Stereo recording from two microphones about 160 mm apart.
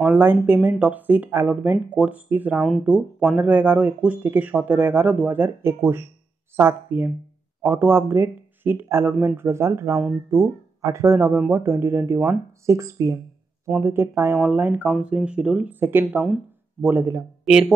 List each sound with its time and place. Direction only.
0.0 s speech: 10° right (ahead or behind)
16.8 s a man's voice: 15° right (ahead or behind)
17.5 s speech: 5° right (ahead or behind)